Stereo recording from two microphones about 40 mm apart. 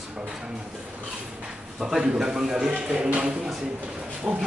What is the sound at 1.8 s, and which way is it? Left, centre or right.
A man's voice, centre.